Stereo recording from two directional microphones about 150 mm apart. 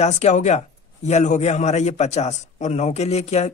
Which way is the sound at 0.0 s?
50° left (ahead or behind).